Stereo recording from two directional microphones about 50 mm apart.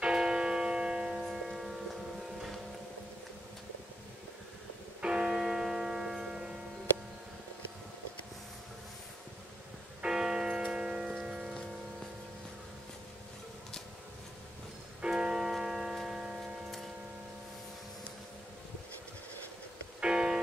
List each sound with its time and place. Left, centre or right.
0.0 s music: centre
5.0 s music: centre
10.0 s music: centre
10.7 s tick-tock: centre
11.2 s music: centre
15.0 s tick-tock: centre
20.0 s music: centre